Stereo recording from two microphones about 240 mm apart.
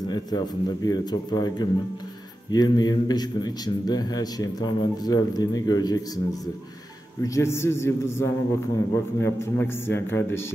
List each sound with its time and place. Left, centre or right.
0.0 s a man's voice: centre
7.2 s a man's voice: centre